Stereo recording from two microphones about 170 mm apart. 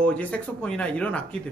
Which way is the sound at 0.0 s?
10° left (ahead or behind).